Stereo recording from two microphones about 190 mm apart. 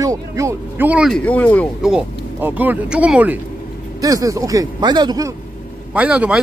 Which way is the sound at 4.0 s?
20° right (ahead or behind).